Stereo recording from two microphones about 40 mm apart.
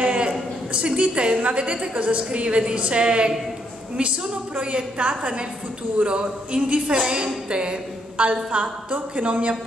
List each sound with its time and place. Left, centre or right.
0.0 s a woman's voice: right
4.6 s a woman's voice: right
8.2 s speech: right